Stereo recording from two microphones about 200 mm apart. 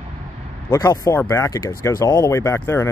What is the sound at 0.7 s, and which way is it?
Speech, 15° left (ahead or behind).